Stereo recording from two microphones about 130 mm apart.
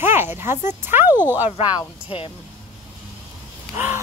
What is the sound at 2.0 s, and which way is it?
Speech, 45° left (ahead or behind).